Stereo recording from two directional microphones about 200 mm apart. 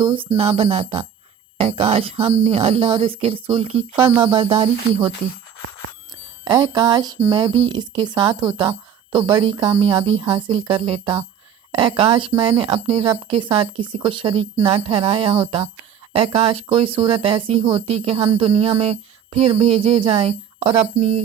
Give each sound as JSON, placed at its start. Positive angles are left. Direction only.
{"t": 0.3, "sound": "speech", "side_deg": -25}
{"t": 6.4, "sound": "speech", "side_deg": -20}